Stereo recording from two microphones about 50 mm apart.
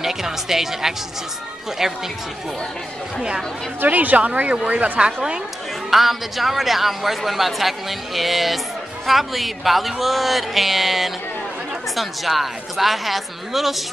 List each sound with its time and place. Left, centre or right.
0.0 s speech: centre
3.2 s speech: centre
3.8 s speech: right
5.9 s a man's voice: centre